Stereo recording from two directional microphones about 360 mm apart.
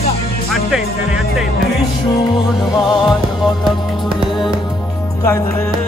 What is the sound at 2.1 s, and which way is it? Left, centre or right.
Music, centre.